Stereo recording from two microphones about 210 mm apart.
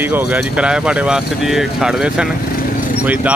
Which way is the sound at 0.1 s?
5° right (ahead or behind).